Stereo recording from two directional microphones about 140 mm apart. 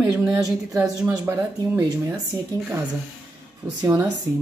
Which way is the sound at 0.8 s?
20° right (ahead or behind).